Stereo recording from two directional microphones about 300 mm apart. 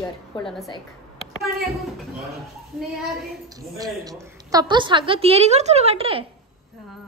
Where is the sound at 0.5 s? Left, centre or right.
Centre.